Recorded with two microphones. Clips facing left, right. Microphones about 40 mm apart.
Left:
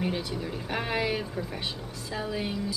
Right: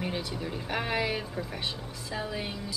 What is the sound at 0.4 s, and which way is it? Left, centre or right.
A woman's voice, centre.